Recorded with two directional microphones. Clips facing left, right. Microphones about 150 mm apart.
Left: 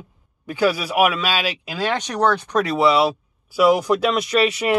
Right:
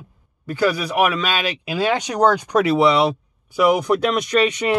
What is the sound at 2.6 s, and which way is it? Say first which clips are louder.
Speech: right 1 dB; centre (ahead or behind).